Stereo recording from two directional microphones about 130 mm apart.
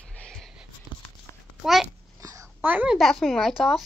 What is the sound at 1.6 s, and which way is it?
Speech, centre (ahead or behind).